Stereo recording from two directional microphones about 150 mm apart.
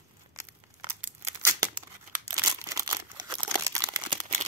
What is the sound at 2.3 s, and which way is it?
Crumpling, 25° right (ahead or behind).